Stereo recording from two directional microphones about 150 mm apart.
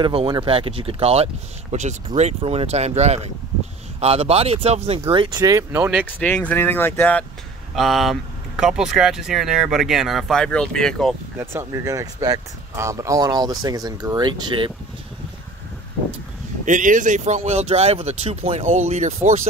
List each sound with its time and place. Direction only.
0.0 s speech: 35° right (ahead or behind)
5.1 s speech: 30° right (ahead or behind); by 6.0 s 10° right (ahead or behind)
6.1 s speech: 10° left (ahead or behind)
7.7 s speech: centre (ahead or behind)
11.3 s speech: 20° right (ahead or behind)
16.6 s speech: 60° right (ahead or behind)